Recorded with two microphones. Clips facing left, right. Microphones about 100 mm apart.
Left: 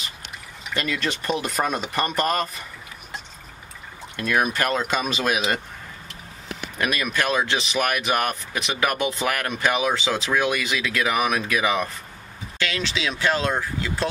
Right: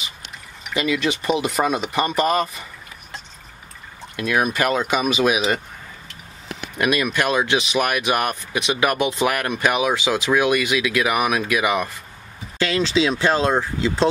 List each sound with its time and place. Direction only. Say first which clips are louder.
0.7 s speech: right 5 dB; 5° right (ahead or behind)
4.2 s speech: right 2 dB; 5° right (ahead or behind)
6.8 s speech: right 4 dB; 15° right (ahead or behind)
12.5 s speech: right 8 dB; 35° right (ahead or behind)